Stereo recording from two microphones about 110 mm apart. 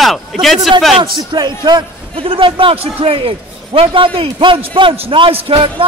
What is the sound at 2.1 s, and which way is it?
A man's voice, 55° right (ahead or behind).